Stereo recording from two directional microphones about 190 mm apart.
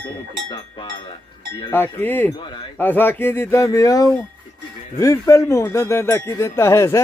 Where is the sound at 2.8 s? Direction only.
10° left (ahead or behind).